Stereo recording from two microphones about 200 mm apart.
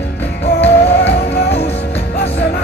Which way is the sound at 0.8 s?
60° left (ahead or behind).